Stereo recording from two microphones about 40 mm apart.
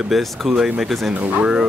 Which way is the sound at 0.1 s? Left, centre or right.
Centre.